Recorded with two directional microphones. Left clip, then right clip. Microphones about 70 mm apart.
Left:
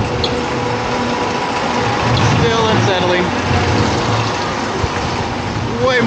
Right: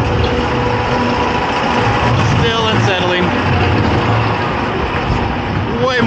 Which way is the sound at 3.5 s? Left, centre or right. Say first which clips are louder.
Right 1 dB; centre.